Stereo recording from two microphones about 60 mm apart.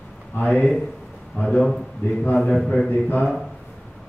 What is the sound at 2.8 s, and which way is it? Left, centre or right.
Speech, left.